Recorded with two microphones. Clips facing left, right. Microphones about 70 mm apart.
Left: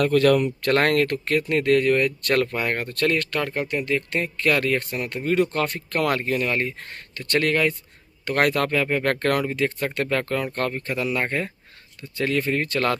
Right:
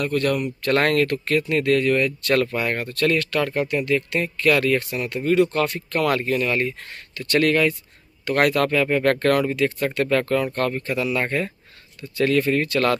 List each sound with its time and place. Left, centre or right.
0.0 s speech: left
0.7 s speech: left